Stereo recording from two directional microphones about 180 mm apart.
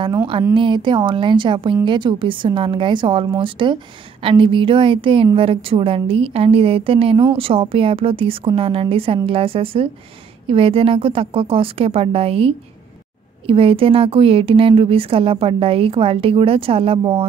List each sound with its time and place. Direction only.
0.6 s a woman's voice: 25° right (ahead or behind)